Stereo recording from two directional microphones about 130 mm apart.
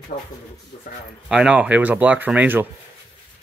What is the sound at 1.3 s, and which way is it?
Speech, 5° right (ahead or behind).